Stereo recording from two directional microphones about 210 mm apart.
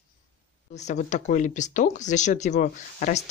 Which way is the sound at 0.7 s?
35° left (ahead or behind).